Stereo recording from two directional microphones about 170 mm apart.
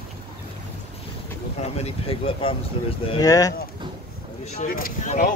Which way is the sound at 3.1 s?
20° left (ahead or behind).